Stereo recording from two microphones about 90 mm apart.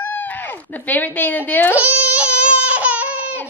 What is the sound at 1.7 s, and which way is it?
Baby cry, 15° right (ahead or behind).